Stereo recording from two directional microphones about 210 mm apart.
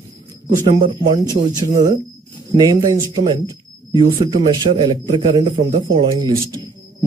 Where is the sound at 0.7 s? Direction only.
25° right (ahead or behind).